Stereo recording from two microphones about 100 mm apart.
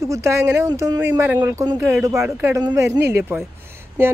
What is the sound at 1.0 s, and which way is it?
Speech, 20° right (ahead or behind).